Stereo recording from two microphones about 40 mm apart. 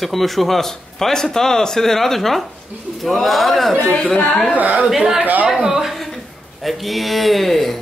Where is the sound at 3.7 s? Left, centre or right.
Left.